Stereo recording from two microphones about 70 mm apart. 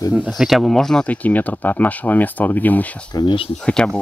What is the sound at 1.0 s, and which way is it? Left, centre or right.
Speech, left.